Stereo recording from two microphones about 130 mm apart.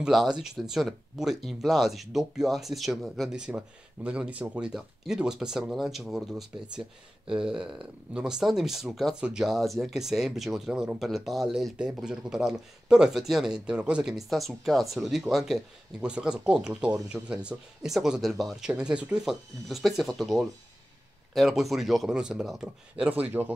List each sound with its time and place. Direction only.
0.0 s speech: 5° right (ahead or behind)